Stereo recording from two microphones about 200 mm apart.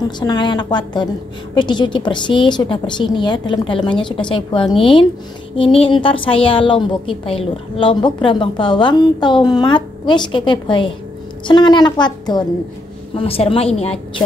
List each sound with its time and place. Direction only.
0.2 s a woman's voice: 20° left (ahead or behind)